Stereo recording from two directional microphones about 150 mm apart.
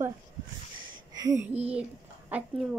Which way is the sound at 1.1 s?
25° right (ahead or behind).